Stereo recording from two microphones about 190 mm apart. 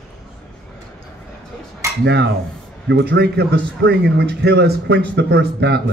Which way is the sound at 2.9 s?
65° right (ahead or behind).